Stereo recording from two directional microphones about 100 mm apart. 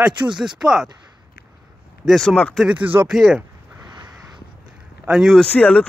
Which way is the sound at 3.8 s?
45° right (ahead or behind).